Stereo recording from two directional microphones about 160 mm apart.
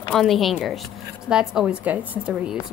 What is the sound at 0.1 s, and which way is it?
A woman's voice, centre (ahead or behind).